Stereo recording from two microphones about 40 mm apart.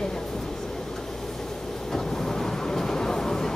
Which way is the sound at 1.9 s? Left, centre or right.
Centre.